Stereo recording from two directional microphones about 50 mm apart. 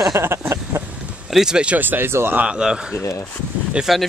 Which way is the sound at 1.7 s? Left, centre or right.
Right.